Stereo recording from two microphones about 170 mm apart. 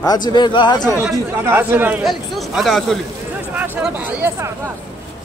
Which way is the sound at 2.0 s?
Centre (ahead or behind).